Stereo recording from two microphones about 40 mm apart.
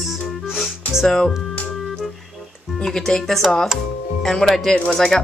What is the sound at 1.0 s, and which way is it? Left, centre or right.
Speech, centre.